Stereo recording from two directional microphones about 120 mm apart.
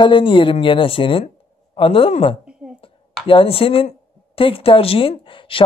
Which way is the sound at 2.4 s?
10° right (ahead or behind).